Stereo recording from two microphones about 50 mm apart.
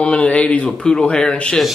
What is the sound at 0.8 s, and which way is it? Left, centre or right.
Speech, centre.